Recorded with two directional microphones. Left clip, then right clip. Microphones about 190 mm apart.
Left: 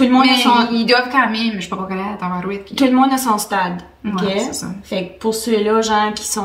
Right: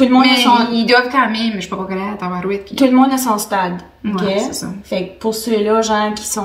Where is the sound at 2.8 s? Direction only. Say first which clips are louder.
Right 1 dB; 15° left (ahead or behind).